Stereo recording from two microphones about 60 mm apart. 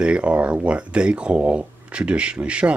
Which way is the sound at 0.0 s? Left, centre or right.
Centre.